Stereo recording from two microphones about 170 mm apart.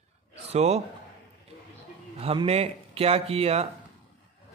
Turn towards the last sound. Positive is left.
turn(degrees=-35)  # may be behind; listen again after turning